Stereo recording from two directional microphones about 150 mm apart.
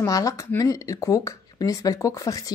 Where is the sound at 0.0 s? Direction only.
20° left (ahead or behind).